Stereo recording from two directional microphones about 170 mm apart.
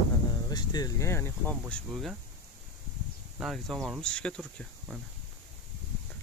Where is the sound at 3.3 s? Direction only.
Centre (ahead or behind).